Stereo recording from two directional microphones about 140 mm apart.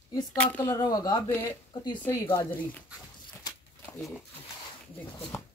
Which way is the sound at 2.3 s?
10° left (ahead or behind).